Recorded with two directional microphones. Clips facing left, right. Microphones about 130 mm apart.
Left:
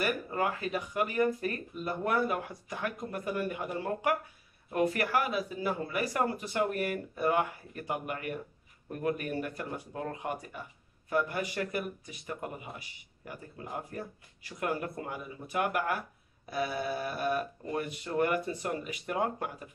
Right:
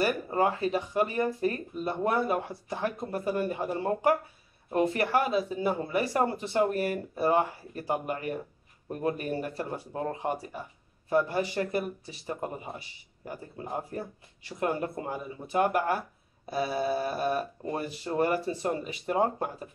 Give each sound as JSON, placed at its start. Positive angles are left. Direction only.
{"t": 0.0, "sound": "speech", "side_deg": -30}